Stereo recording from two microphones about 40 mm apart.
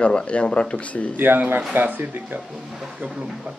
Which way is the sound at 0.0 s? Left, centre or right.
Left.